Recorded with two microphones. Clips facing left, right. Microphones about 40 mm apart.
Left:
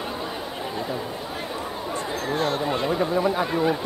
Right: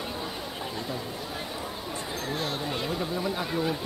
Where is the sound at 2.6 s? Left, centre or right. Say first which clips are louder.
Left 7 dB; centre.